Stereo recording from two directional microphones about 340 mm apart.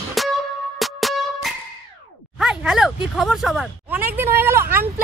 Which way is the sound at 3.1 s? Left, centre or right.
Centre.